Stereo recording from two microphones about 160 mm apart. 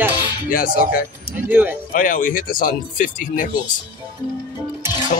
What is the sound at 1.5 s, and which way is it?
Speech, 10° right (ahead or behind).